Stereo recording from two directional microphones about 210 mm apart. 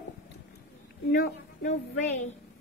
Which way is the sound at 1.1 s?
45° left (ahead or behind).